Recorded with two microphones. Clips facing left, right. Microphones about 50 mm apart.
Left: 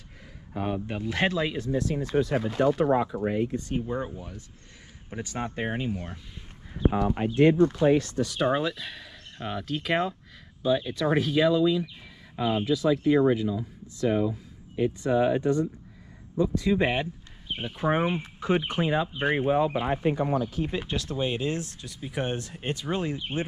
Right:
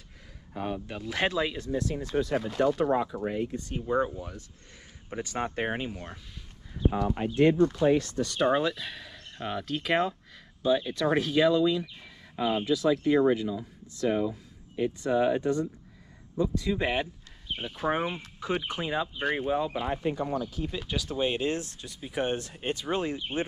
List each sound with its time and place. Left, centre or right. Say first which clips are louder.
0.5 s speech: left 3 dB; centre
4.0 s speech: right 4 dB; centre
5.6 s speech: left 1 dB; centre
5.9 s speech: left 6 dB; centre
6.9 s speech: left 3 dB; left
8.1 s speech: even; centre; by 21.0 s left
21.1 s speech: right 1 dB; right
21.8 s speech: right 2 dB; centre